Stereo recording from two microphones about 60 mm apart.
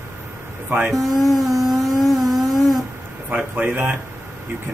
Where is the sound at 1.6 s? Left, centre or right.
Centre.